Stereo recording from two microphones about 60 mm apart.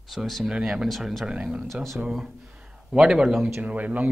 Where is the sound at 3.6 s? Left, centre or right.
Right.